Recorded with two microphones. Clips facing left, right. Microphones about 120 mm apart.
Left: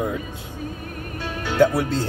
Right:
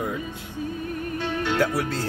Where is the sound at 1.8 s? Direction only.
25° left (ahead or behind).